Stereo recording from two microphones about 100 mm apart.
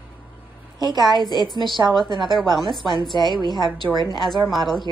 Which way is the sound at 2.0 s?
50° right (ahead or behind).